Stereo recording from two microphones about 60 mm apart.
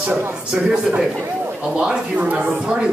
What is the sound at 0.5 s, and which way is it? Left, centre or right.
Speech, centre.